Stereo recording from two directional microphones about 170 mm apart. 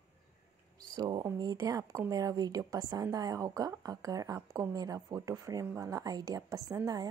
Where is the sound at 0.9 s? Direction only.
25° right (ahead or behind).